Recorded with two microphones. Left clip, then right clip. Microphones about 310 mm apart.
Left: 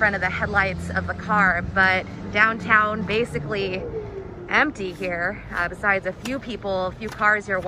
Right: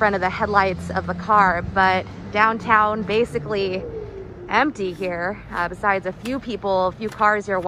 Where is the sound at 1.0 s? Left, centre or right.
Centre.